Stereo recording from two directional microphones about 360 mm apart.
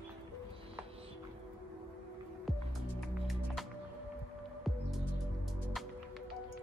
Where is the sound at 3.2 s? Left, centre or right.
Centre.